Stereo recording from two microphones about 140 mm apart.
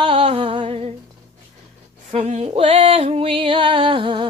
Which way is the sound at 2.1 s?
50° right (ahead or behind).